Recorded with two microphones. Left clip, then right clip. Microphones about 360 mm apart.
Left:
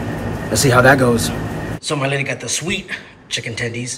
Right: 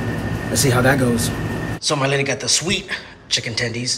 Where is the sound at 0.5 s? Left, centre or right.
Centre.